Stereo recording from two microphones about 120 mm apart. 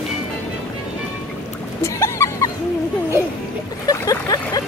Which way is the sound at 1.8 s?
25° left (ahead or behind).